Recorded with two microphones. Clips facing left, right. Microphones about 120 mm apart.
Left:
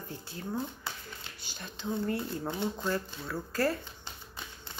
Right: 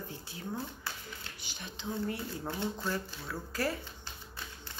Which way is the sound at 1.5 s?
50° left (ahead or behind).